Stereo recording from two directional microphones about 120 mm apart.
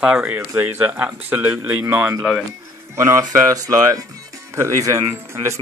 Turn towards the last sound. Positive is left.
turn(degrees=-20)  # may be behind; listen again after turning